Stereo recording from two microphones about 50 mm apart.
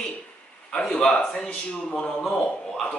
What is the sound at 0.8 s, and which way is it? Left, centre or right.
Speech, centre.